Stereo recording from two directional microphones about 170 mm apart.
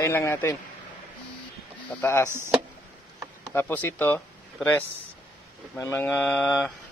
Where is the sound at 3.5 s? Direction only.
10° left (ahead or behind).